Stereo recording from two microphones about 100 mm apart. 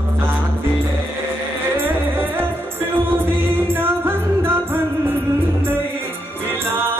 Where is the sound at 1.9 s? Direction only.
20° right (ahead or behind).